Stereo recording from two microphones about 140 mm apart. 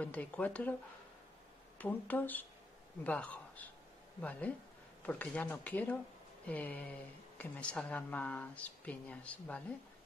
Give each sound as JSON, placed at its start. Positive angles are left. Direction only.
{"t": 0.0, "sound": "speech", "side_deg": 10}
{"t": 1.8, "sound": "speech", "side_deg": 10}